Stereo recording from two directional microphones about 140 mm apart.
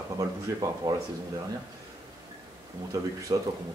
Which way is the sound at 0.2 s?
30° right (ahead or behind).